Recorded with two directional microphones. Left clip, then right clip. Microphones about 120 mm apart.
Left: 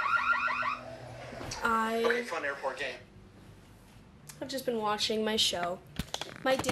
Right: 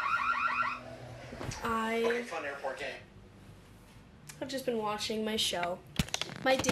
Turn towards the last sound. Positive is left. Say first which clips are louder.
# even
turn(degrees=0)  # may be behind; listen again after turning